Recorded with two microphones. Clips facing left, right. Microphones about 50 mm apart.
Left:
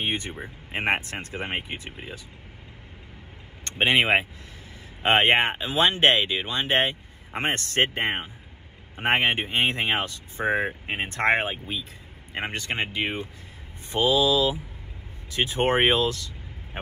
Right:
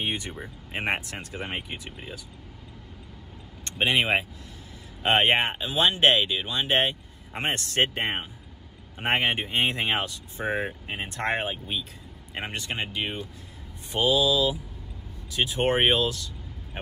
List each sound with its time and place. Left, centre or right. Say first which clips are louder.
0.0 s speech: left 2 dB; left
3.6 s speech: left 3 dB; left